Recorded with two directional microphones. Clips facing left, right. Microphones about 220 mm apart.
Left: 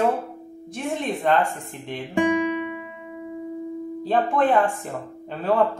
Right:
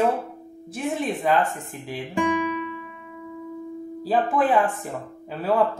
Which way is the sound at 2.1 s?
20° left (ahead or behind).